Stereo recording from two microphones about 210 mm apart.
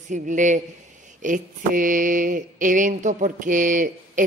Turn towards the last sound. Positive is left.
turn(degrees=-40)  # may be behind; listen again after turning